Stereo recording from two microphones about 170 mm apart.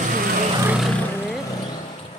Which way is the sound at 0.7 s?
Centre (ahead or behind).